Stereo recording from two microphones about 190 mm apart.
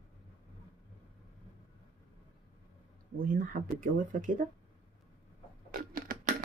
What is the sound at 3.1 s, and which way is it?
Speech, 45° right (ahead or behind).